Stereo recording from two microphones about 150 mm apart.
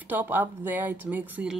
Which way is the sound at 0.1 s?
10° right (ahead or behind).